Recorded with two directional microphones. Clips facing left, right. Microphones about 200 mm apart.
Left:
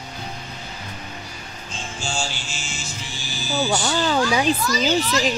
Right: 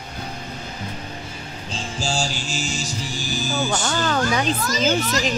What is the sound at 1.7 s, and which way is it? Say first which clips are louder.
Music: right 3 dB; 35° right (ahead or behind).